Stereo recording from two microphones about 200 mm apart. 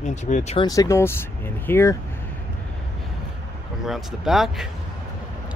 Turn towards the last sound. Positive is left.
turn(degrees=0)  # may be behind; listen again after turning